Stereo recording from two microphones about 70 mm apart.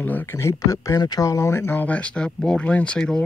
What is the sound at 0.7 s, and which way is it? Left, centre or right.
Speech, left.